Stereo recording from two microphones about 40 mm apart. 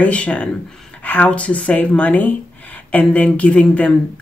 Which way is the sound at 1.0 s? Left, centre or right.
Left.